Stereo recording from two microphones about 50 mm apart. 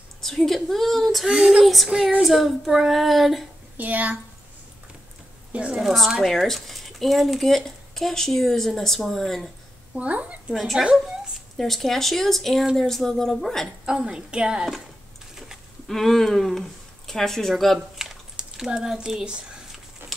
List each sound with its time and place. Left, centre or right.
0.2 s speech: centre
1.2 s speech: right
1.6 s speech: centre
1.9 s speech: centre
2.2 s speech: centre
3.7 s a woman's voice: right
5.5 s a woman's voice: right
5.8 s speech: centre
9.9 s a woman's voice: right
10.5 s a woman's voice: centre
13.9 s speech: centre
15.9 s speech: centre
17.9 s a sound: centre